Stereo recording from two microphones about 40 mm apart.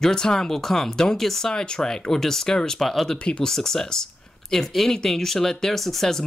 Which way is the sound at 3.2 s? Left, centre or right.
Left.